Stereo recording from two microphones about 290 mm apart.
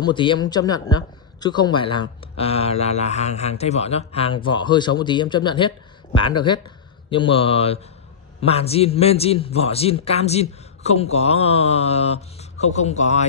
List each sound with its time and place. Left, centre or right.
0.0 s a man's voice: centre